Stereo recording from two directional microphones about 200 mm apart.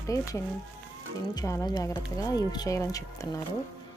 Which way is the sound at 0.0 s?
15° left (ahead or behind).